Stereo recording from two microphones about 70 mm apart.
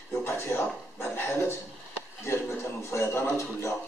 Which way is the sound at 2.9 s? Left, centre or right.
Left.